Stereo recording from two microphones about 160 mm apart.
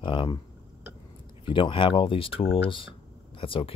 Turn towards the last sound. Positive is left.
turn(degrees=35)  # may be behind; listen again after turning